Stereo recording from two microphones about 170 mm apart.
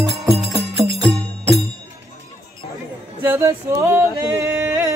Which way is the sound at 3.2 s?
15° right (ahead or behind).